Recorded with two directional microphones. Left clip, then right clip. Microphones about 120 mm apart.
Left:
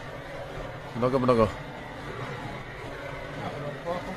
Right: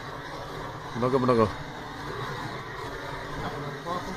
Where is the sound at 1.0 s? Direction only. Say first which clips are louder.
Even; 10° left (ahead or behind).